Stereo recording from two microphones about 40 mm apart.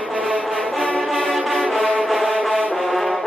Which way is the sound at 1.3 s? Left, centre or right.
Centre.